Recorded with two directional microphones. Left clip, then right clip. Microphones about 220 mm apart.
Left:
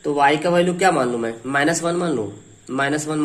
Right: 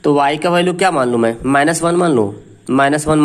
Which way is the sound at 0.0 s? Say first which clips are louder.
Right 4 dB; 45° right (ahead or behind).